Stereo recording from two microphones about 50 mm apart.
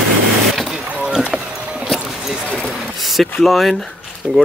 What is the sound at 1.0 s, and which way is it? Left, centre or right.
Rowboat, centre.